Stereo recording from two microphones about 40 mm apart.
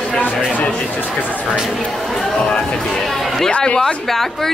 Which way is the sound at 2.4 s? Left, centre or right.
Left.